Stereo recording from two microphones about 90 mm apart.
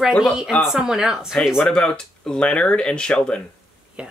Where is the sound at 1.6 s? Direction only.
10° left (ahead or behind).